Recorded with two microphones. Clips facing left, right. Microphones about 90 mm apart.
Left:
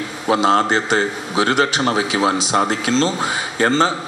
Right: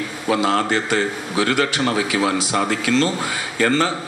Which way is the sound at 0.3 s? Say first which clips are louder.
Left 3 dB; 25° left (ahead or behind).